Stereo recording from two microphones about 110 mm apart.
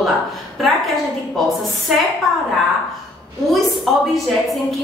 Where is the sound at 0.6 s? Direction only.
Centre (ahead or behind).